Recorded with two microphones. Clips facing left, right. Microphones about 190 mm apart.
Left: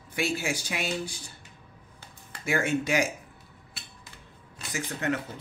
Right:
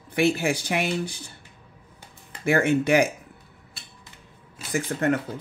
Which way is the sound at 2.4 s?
65° right (ahead or behind).